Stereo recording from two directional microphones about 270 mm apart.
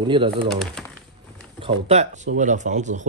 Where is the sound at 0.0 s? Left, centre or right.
Centre.